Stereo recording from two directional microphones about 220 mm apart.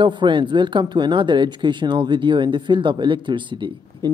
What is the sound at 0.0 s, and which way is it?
Speech, 20° right (ahead or behind).